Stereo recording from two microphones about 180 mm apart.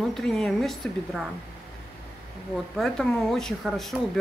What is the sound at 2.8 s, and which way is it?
A woman's voice, centre (ahead or behind).